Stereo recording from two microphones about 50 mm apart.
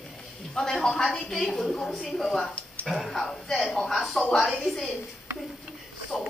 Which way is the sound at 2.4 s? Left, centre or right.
Left.